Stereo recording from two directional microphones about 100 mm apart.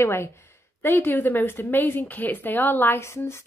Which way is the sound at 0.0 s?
25° left (ahead or behind).